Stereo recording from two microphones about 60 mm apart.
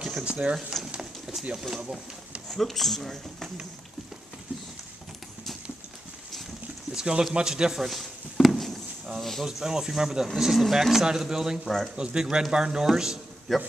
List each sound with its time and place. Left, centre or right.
0.2 s speech: centre
2.5 s speech: centre
6.9 s speech: centre
7.3 s a sound: centre
9.2 s speech: centre
11.6 s speech: centre
12.0 s speech: centre
13.5 s speech: centre